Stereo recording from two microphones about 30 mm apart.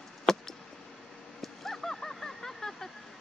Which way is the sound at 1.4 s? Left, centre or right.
Centre.